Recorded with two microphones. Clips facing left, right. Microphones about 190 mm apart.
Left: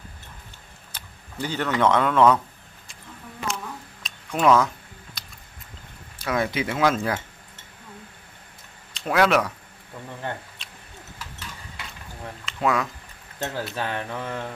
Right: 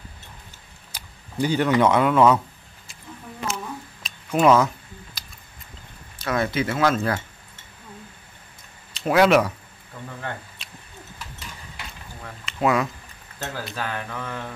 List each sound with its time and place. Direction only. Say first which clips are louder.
0.9 s speech: right 7 dB; 15° right (ahead or behind)
3.4 s a sound: right 1 dB; 5° right (ahead or behind)
6.1 s speech: right 1 dB; 10° left (ahead or behind)
8.9 s speech: right 3 dB; 5° right (ahead or behind)
10.6 s owl: right 1 dB; 5° right (ahead or behind)
12.4 s speech: right 2 dB; 5° right (ahead or behind)
13.7 s mantra: left 1 dB; 25° left (ahead or behind)